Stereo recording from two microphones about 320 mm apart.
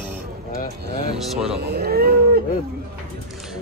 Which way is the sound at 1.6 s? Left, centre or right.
Right.